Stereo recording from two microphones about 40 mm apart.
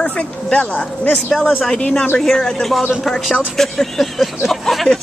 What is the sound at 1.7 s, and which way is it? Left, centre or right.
Speech, centre.